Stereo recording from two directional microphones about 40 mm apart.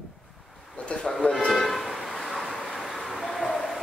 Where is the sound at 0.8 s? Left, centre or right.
Left.